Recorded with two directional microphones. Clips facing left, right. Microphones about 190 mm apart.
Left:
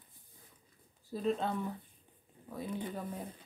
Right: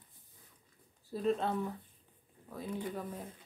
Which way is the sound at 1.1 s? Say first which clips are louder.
Right 1 dB; centre (ahead or behind).